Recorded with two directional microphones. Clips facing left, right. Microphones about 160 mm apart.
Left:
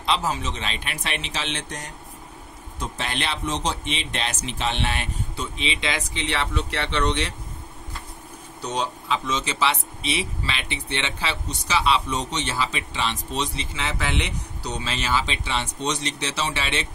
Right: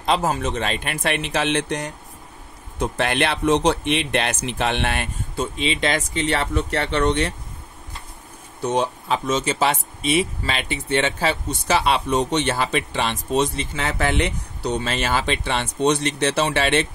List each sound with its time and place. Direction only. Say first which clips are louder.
0.0 s speech: right 4 dB; 50° right (ahead or behind)
8.5 s speech: right 6 dB; 50° right (ahead or behind)